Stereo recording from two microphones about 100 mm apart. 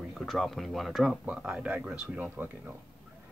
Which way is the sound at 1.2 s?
10° right (ahead or behind).